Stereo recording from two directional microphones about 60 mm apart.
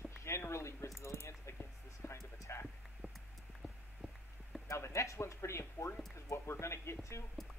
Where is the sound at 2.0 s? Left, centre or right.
Left.